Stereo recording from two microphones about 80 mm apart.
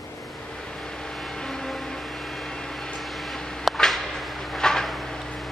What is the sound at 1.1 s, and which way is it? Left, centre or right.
Vehicle, centre.